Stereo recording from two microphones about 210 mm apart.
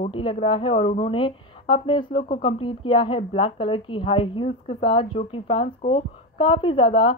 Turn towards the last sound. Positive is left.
turn(degrees=25)  # may be behind; listen again after turning